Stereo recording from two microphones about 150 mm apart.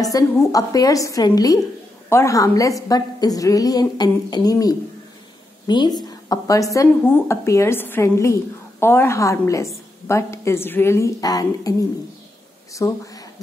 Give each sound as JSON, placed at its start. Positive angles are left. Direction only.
{"t": 0.0, "sound": "speech", "side_deg": 25}
{"t": 12.7, "sound": "speech", "side_deg": 20}